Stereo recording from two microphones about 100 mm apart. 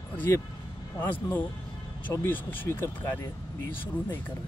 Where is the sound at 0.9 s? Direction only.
15° left (ahead or behind).